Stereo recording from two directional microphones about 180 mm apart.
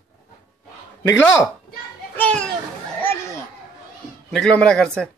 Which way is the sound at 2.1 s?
5° left (ahead or behind).